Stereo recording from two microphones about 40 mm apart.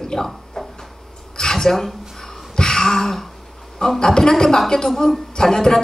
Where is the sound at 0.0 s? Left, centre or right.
Centre.